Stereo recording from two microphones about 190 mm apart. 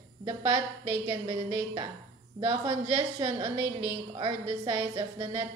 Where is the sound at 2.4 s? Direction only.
25° right (ahead or behind).